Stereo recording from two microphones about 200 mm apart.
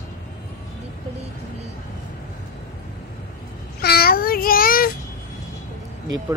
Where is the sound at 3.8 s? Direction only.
50° left (ahead or behind).